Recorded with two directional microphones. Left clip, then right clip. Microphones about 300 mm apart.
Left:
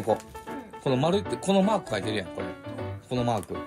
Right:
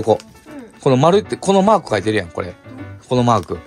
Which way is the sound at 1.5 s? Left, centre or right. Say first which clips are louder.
Right 11 dB; right.